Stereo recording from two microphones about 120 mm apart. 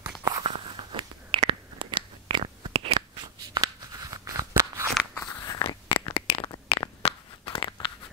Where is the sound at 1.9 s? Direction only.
45° right (ahead or behind).